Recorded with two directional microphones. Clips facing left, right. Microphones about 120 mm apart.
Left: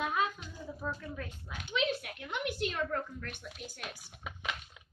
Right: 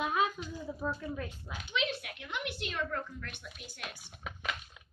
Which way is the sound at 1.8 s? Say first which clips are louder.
Left 3 dB; 40° left (ahead or behind).